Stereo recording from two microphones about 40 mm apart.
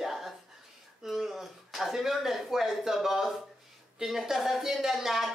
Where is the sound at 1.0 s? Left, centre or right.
Centre.